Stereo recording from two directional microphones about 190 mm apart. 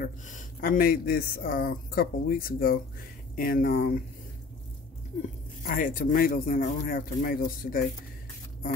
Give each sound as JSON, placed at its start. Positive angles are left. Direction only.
{"t": 0.0, "sound": "speech", "side_deg": 45}
{"t": 5.6, "sound": "speech", "side_deg": 45}